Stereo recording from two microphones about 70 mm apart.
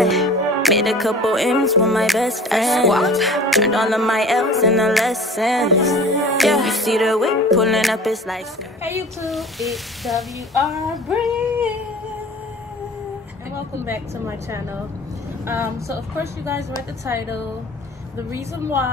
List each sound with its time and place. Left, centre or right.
0.0 s music: centre
13.8 s speech: right